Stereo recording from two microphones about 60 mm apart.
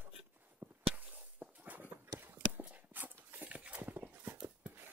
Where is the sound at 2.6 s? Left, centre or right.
Right.